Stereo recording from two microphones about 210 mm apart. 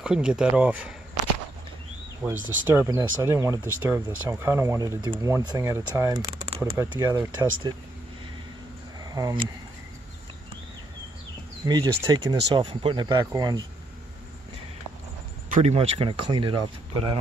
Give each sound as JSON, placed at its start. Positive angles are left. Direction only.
{"t": 0.0, "sound": "speech", "side_deg": -5}
{"t": 2.4, "sound": "speech", "side_deg": -10}
{"t": 9.1, "sound": "speech", "side_deg": -20}
{"t": 11.6, "sound": "speech", "side_deg": -20}
{"t": 15.5, "sound": "speech", "side_deg": -30}